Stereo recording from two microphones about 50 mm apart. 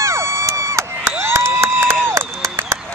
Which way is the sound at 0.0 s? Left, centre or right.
Right.